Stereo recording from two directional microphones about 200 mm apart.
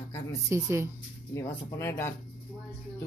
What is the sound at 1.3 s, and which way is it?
Speech, 10° left (ahead or behind).